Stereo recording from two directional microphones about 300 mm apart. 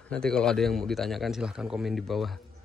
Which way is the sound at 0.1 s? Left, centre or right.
Centre.